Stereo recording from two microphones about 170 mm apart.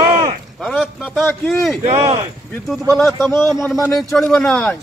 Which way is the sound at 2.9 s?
Centre (ahead or behind).